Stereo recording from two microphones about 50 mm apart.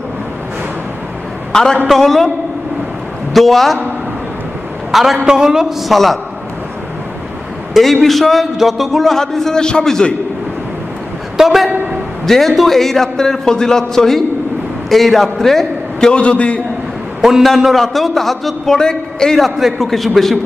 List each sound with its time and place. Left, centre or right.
1.5 s a man's voice: centre
3.3 s a man's voice: centre
4.9 s a man's voice: centre
5.2 s a man's voice: centre
5.9 s a man's voice: centre
7.7 s a man's voice: centre
11.3 s a man's voice: centre
16.1 s a man's voice: left
17.6 s a man's voice: centre
19.3 s a man's voice: centre